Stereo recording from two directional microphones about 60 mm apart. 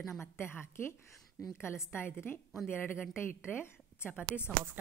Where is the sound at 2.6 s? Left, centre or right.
Left.